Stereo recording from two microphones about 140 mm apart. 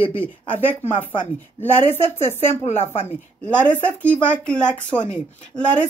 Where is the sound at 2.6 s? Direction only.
45° left (ahead or behind).